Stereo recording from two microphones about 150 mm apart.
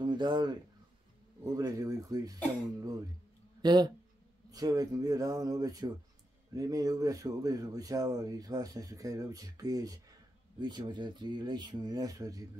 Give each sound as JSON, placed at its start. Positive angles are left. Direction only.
{"t": 0.0, "sound": "speech", "side_deg": -30}